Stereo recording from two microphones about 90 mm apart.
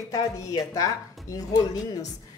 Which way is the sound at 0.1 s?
40° left (ahead or behind).